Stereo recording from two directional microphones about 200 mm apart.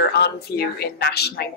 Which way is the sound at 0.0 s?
55° left (ahead or behind).